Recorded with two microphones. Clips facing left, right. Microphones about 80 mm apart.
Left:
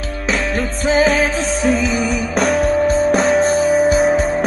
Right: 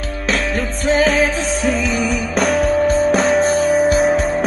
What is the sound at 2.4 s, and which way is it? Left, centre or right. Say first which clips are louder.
Music: even; centre.